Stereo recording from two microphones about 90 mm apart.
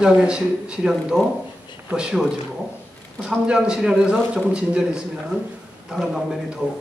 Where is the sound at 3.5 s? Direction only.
10° right (ahead or behind).